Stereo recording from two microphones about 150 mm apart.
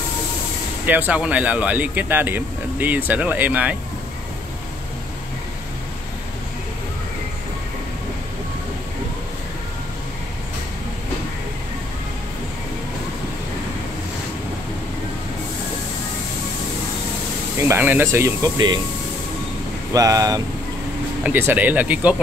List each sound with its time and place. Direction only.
0.8 s speech: 10° right (ahead or behind)
17.6 s speech: 15° right (ahead or behind)
19.9 s speech: 25° right (ahead or behind)
21.2 s speech: 15° right (ahead or behind)